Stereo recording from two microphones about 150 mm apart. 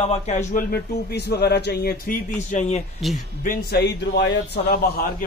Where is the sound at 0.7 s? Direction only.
90° left; by 2.8 s 55° left (ahead or behind).